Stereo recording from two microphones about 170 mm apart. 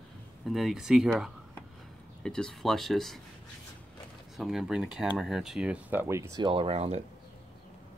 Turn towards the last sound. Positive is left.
turn(degrees=-35)  # may be behind; listen again after turning